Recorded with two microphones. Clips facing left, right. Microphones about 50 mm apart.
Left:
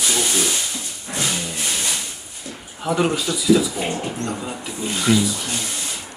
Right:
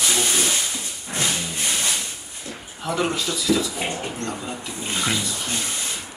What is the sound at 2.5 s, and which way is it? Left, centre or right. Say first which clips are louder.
Speech: left 4 dB; centre.